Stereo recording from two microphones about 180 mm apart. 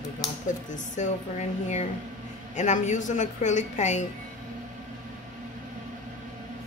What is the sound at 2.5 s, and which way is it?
A woman's voice, 40° left (ahead or behind).